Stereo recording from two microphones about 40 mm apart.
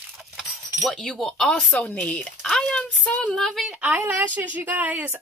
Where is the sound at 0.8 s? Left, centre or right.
Centre.